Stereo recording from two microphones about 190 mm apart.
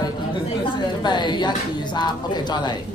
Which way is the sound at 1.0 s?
25° left (ahead or behind).